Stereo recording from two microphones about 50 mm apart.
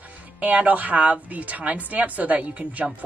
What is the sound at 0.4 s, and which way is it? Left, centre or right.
Speech, right.